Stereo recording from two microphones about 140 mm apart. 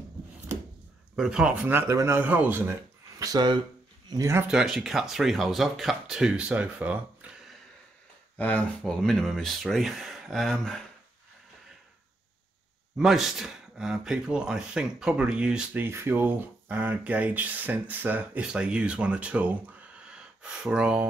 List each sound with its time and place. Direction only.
1.1 s speech: 5° right (ahead or behind)
3.2 s speech: 30° right (ahead or behind)
4.1 s speech: 20° right (ahead or behind)
4.5 s speech: centre (ahead or behind)
8.4 s speech: 10° left (ahead or behind)
12.9 s speech: centre (ahead or behind)